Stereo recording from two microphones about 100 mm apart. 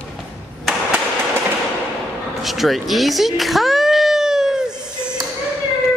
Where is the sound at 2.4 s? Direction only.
Centre (ahead or behind).